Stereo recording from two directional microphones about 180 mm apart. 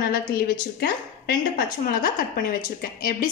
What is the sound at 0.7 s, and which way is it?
A woman's voice, 55° left (ahead or behind).